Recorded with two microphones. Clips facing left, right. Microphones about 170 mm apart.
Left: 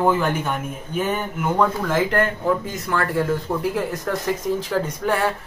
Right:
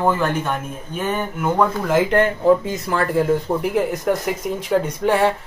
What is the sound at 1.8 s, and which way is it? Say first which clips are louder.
Speech: right 4 dB; 20° right (ahead or behind).